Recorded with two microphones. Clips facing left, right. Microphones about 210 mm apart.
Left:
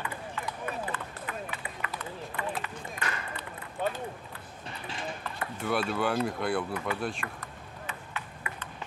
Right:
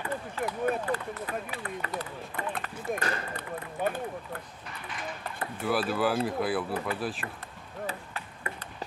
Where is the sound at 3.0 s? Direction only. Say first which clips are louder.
Right 4 dB; 35° right (ahead or behind).